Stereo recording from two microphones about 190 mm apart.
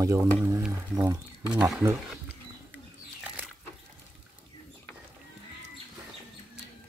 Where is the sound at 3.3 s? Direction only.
5° right (ahead or behind).